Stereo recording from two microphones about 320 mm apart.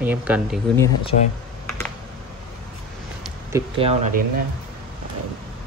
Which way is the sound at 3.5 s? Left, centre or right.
Centre.